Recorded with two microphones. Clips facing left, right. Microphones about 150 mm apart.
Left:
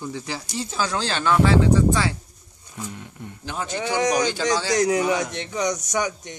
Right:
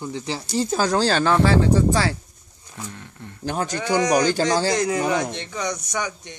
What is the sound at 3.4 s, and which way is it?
A man's voice, 45° right (ahead or behind).